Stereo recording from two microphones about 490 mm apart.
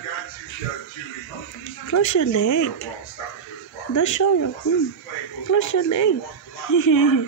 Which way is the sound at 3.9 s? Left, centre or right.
Left.